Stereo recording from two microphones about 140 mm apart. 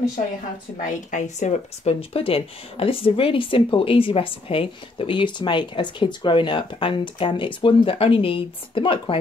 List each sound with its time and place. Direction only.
0.7 s speech: 65° left (ahead or behind); by 9.2 s 40° left (ahead or behind)